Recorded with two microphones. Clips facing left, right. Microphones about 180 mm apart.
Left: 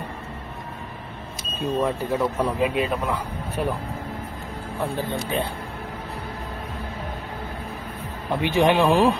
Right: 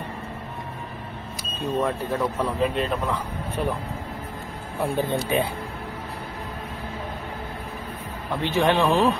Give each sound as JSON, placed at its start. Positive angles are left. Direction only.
{"t": 1.8, "sound": "speech", "side_deg": 10}
{"t": 4.9, "sound": "speech", "side_deg": -15}
{"t": 8.3, "sound": "speech", "side_deg": 15}